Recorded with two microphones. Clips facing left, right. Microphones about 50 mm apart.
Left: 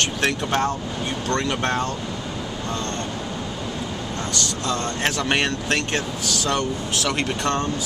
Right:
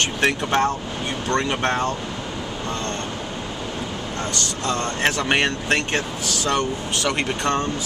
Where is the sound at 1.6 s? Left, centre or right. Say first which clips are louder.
Right 2 dB; right.